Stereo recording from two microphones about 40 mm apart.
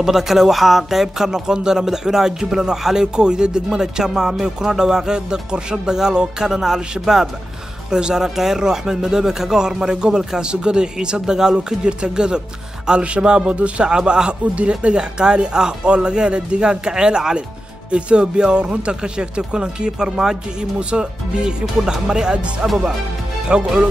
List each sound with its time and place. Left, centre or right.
0.0 s speech: centre
14.4 s speech: right